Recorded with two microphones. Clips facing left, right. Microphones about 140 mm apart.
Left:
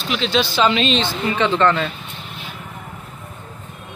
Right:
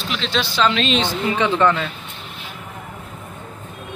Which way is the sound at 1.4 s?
10° right (ahead or behind).